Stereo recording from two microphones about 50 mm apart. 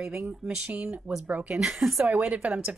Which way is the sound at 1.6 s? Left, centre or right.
Centre.